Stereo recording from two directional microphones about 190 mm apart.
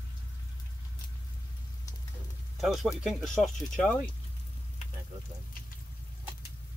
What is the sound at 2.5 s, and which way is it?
Speech, centre (ahead or behind).